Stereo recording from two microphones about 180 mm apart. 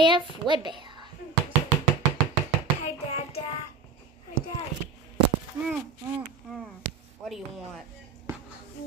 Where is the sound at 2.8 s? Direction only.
35° left (ahead or behind).